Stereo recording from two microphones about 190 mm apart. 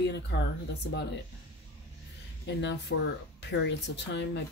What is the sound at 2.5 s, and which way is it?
Speech, 70° left (ahead or behind).